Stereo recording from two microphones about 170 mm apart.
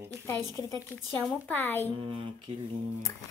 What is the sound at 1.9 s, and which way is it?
Speech, 30° right (ahead or behind).